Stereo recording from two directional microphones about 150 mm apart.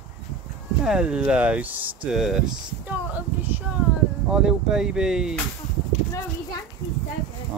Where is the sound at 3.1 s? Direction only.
10° right (ahead or behind).